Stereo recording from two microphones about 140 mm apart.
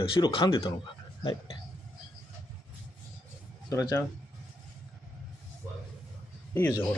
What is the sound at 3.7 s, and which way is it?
Speech, 25° left (ahead or behind).